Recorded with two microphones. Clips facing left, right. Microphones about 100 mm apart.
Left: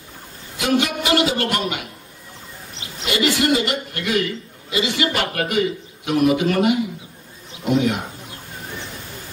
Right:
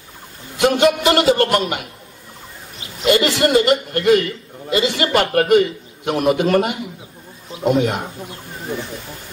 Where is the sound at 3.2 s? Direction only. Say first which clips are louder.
Right 3 dB; 35° right (ahead or behind).